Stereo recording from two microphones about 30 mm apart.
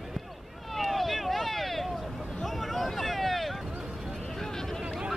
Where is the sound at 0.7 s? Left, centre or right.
Centre.